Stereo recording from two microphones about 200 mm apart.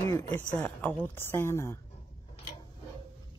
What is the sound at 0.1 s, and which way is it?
Speech, 15° left (ahead or behind).